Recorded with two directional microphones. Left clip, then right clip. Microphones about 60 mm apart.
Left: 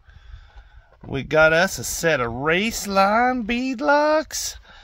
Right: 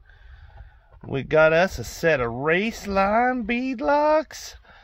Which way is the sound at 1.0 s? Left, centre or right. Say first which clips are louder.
Left 1 dB; right.